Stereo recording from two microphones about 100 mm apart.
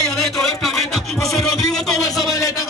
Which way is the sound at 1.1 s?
30° left (ahead or behind).